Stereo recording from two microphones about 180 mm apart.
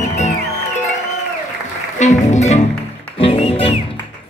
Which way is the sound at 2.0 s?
40° left (ahead or behind).